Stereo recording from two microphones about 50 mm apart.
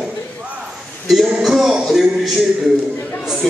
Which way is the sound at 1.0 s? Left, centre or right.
Centre.